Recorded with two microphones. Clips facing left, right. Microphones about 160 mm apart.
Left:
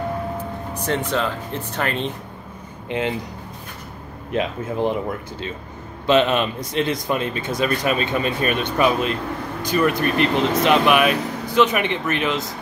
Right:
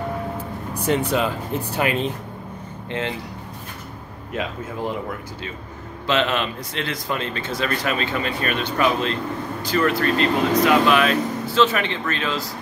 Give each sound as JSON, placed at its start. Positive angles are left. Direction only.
{"t": 1.1, "sound": "speech", "side_deg": -10}
{"t": 2.9, "sound": "speech", "side_deg": 15}
{"t": 6.0, "sound": "speech", "side_deg": 20}